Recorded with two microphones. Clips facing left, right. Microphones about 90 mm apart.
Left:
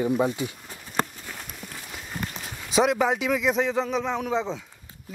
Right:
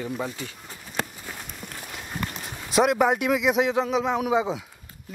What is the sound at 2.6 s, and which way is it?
A man's voice, 5° right (ahead or behind).